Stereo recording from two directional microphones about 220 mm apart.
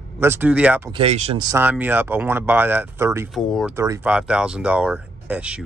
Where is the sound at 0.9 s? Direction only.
30° right (ahead or behind).